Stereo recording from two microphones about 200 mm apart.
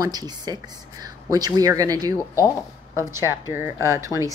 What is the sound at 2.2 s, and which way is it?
Speech, 15° left (ahead or behind).